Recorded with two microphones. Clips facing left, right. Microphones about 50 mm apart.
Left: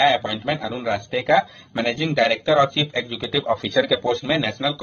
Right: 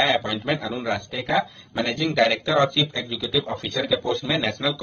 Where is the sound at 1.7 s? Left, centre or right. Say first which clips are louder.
Left 1 dB; left.